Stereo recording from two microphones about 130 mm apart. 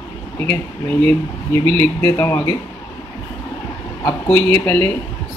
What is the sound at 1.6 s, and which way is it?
Speech, 15° left (ahead or behind).